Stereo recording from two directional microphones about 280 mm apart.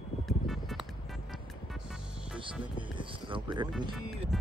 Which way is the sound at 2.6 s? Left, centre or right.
Centre.